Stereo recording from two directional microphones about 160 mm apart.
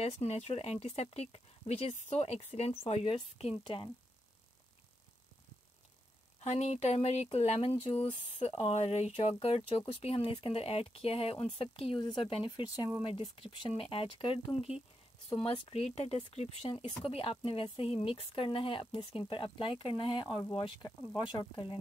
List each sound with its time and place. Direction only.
0.0 s speech: 40° left (ahead or behind)
6.4 s speech: 45° left (ahead or behind)
12.6 s speech: 20° left (ahead or behind)
13.0 s speech: 35° left (ahead or behind)